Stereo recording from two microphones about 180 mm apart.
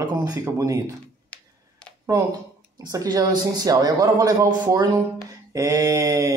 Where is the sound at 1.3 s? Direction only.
5° left (ahead or behind).